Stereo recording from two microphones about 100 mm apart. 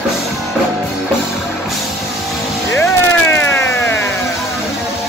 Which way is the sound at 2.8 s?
25° left (ahead or behind).